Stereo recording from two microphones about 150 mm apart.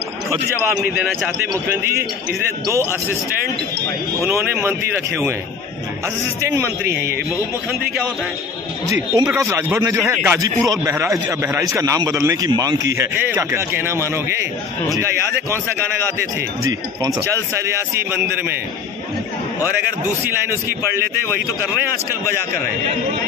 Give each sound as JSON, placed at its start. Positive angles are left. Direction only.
{"t": 1.5, "sound": "speech", "side_deg": -15}
{"t": 4.2, "sound": "speech", "side_deg": -20}
{"t": 6.4, "sound": "speech", "side_deg": -15}
{"t": 8.9, "sound": "a man's voice", "side_deg": -20}
{"t": 17.0, "sound": "a man's voice", "side_deg": -20}